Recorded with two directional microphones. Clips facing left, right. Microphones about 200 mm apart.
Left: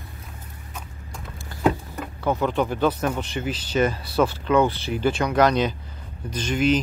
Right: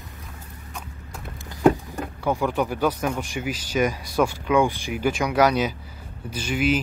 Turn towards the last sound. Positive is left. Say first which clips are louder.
# left 2 dB
turn(degrees=-10)  # may be behind; listen again after turning